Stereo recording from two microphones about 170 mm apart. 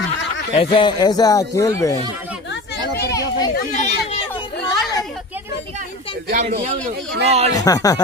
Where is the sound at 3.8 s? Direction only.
40° left (ahead or behind).